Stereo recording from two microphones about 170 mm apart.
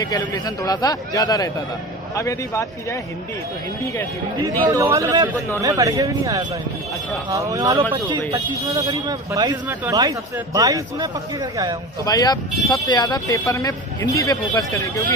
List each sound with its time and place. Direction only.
0.0 s speech: 20° left (ahead or behind)
4.4 s speech: 20° right (ahead or behind)
12.0 s speech: 20° left (ahead or behind)